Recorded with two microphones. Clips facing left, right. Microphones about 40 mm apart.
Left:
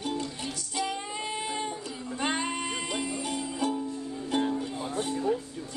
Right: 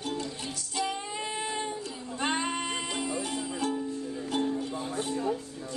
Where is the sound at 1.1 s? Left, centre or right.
Centre.